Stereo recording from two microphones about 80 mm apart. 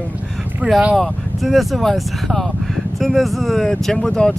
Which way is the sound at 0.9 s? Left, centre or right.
Centre.